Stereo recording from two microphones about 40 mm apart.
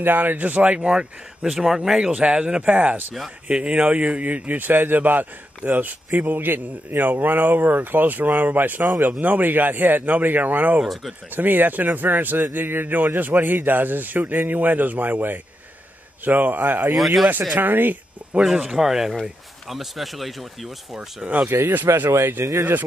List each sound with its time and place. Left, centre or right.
0.0 s speech: right
0.7 s speech: right
1.6 s speech: centre
2.1 s speech: right
3.4 s speech: right
10.8 s speech: centre
11.3 s speech: right
16.9 s speech: centre
17.6 s speech: right
18.4 s speech: centre
21.5 s speech: right
22.3 s speech: right